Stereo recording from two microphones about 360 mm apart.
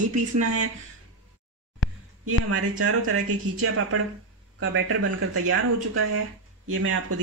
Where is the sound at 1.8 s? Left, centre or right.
Left.